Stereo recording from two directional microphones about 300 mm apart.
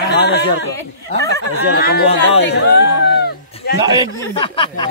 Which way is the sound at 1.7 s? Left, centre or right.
Left.